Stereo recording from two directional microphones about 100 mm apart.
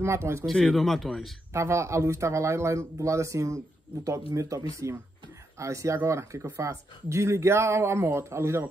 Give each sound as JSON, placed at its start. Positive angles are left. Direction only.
{"t": 0.0, "sound": "speech", "side_deg": -25}
{"t": 0.5, "sound": "speech", "side_deg": 5}
{"t": 1.5, "sound": "speech", "side_deg": -30}